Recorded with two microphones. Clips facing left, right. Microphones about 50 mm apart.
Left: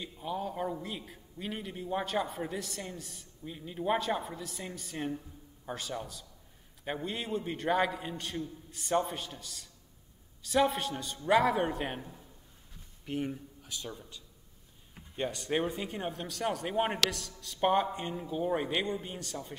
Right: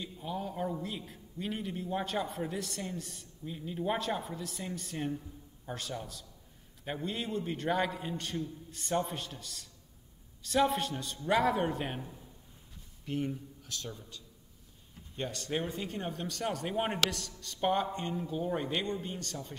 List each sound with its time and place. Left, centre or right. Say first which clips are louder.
0.0 s a man's voice: left 2 dB; centre